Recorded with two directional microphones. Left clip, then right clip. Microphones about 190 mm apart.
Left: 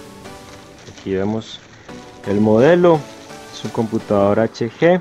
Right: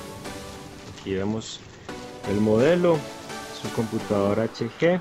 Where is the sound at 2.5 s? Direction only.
45° left (ahead or behind).